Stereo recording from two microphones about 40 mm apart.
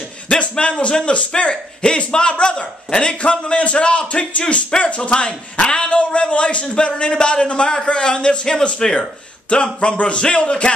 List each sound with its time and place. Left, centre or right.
0.3 s a man's voice: left
5.1 s a man's voice: left